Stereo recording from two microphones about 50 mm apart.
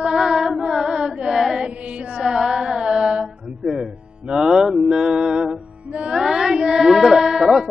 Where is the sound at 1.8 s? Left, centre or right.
Right.